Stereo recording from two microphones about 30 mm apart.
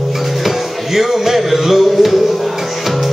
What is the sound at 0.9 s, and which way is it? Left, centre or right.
Music, centre.